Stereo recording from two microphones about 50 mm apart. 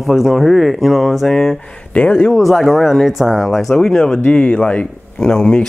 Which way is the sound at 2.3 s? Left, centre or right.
Centre.